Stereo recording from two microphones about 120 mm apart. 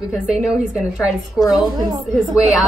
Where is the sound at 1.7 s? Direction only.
35° right (ahead or behind).